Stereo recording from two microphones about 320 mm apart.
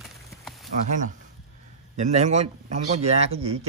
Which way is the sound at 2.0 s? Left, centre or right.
Right.